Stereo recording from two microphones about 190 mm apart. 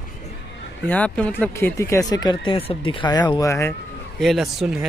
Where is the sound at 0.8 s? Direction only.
5° left (ahead or behind).